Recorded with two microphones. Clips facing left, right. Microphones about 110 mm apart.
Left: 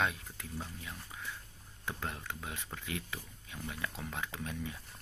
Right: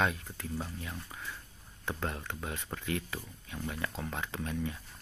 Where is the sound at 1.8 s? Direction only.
35° right (ahead or behind).